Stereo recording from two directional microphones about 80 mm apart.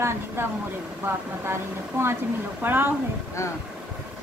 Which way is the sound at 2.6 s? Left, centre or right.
Right.